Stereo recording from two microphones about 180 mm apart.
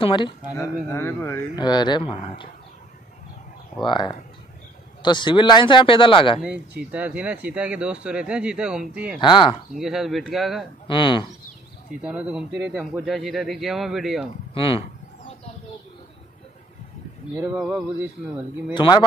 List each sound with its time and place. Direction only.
0.0 s speech: 25° left (ahead or behind)
0.6 s a man's voice: 15° left (ahead or behind)
1.6 s speech: 25° left (ahead or behind)
3.8 s speech: 25° left (ahead or behind)
6.8 s speech: 5° right (ahead or behind)
9.2 s speech: 25° left (ahead or behind)
9.8 s a man's voice: centre (ahead or behind)
10.9 s speech: 25° left (ahead or behind)
12.0 s a man's voice: 5° right (ahead or behind)
13.0 s a man's voice: centre (ahead or behind)
14.5 s a sound: 30° left (ahead or behind)
17.6 s a man's voice: 5° right (ahead or behind)
18.7 s speech: 25° left (ahead or behind)